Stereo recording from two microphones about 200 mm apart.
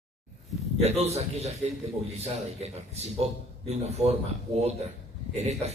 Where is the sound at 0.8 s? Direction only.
35° right (ahead or behind).